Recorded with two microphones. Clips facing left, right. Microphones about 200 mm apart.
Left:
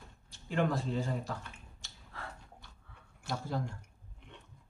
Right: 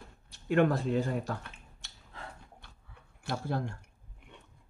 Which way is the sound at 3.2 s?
65° right (ahead or behind).